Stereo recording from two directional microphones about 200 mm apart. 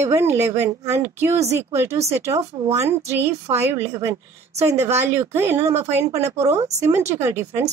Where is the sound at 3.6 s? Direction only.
10° right (ahead or behind).